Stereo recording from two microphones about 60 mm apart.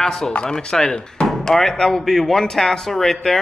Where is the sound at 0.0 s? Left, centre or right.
Centre.